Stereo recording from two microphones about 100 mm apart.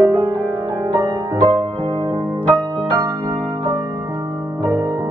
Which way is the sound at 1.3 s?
20° left (ahead or behind).